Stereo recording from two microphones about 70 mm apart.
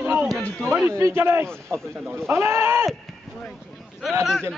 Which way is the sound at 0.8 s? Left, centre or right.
Right.